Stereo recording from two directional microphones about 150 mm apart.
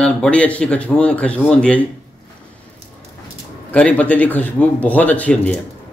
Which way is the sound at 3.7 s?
10° left (ahead or behind).